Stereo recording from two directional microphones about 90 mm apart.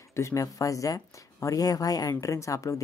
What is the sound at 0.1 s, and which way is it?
Speech, 35° left (ahead or behind).